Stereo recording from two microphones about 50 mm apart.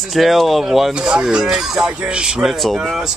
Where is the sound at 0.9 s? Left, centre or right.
Centre.